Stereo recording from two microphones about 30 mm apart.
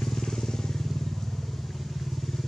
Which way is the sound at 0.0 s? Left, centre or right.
Centre.